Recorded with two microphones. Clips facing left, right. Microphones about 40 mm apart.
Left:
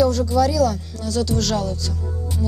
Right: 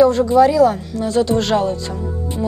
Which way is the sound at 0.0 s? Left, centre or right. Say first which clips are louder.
Right 6 dB; right.